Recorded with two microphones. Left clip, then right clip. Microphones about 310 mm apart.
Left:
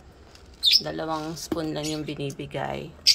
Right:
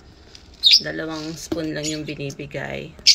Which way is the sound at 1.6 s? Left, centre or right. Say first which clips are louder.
Right 3 dB; left.